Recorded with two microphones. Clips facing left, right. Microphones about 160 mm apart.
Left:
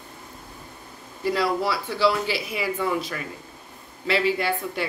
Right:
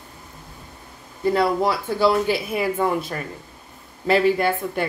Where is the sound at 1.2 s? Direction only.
50° right (ahead or behind).